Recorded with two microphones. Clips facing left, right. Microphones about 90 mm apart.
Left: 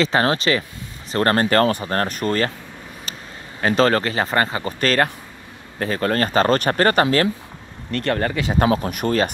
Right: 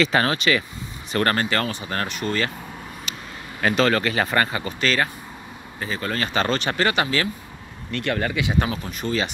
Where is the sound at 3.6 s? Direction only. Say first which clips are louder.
Left 3 dB; 35° left (ahead or behind).